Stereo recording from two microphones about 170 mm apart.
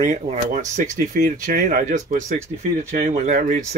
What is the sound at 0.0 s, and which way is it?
Speech, 45° right (ahead or behind).